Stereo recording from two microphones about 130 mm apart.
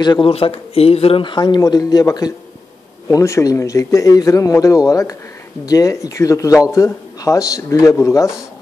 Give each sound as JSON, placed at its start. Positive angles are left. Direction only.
{"t": 0.0, "sound": "speech", "side_deg": 35}
{"t": 0.3, "sound": "speech", "side_deg": 50}